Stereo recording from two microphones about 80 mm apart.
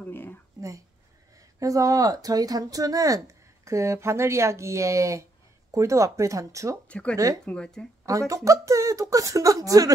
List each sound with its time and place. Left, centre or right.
0.0 s whispering: left
0.6 s a sound: right
1.6 s speech: right
6.9 s speech: centre
8.0 s speech: right